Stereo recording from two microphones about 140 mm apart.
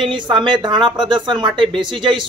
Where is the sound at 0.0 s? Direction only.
35° right (ahead or behind).